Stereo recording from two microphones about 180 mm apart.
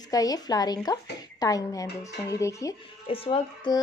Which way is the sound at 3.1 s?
30° left (ahead or behind).